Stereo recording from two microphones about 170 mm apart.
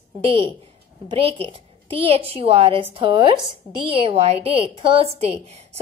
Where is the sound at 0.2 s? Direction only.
30° right (ahead or behind).